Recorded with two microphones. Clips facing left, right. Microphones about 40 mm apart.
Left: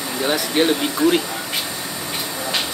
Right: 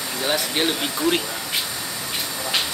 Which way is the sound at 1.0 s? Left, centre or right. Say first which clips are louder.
Left 5 dB; centre.